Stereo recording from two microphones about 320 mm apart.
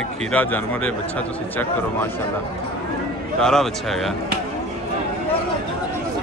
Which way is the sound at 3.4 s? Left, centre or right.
Centre.